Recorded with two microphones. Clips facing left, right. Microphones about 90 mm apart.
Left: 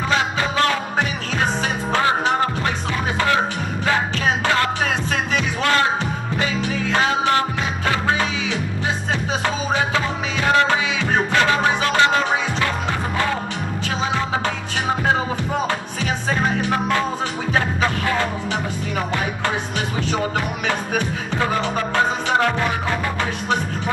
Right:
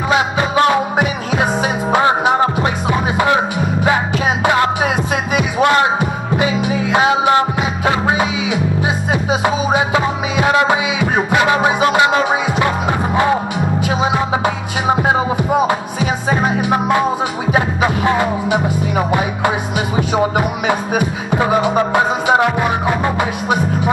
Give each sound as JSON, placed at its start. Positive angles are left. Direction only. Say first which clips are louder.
{"t": 0.1, "sound": "music", "louder": "right 7 dB", "side_deg": -20}